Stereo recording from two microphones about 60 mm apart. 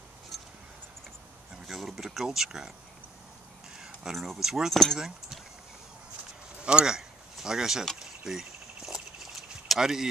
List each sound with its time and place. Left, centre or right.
1.7 s speech: centre
3.7 s speech: centre
6.6 s speech: centre
7.0 s a sound: centre